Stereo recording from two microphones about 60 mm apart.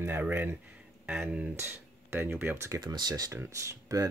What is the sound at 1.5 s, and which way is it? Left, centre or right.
Speech, right.